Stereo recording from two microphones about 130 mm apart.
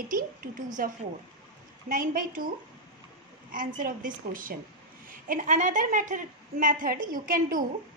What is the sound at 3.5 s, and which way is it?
A woman's voice, 90° right.